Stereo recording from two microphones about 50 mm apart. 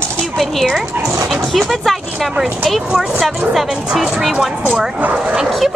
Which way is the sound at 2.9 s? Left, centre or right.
Centre.